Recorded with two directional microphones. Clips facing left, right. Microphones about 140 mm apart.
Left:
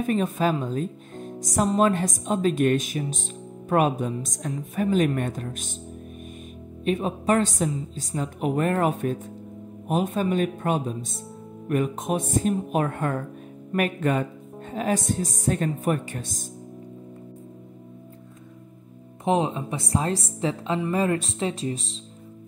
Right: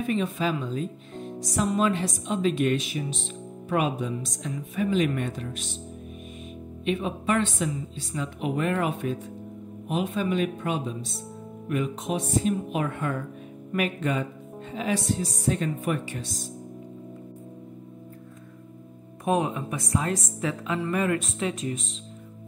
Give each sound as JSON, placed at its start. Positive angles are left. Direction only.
{"t": 0.0, "sound": "speech", "side_deg": 45}
{"t": 6.8, "sound": "a woman's voice", "side_deg": 40}
{"t": 19.2, "sound": "a woman's voice", "side_deg": 25}